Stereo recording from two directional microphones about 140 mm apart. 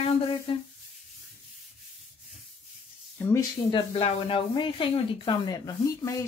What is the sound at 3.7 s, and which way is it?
Speech, 45° left (ahead or behind).